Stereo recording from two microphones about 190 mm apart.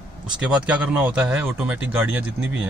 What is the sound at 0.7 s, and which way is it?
Speech, 5° right (ahead or behind).